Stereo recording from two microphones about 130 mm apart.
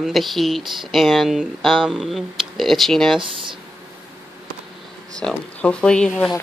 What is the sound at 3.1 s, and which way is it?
Speech, 40° right (ahead or behind).